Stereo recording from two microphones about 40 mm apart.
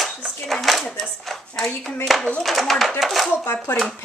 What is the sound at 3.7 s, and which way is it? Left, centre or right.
Speech, left.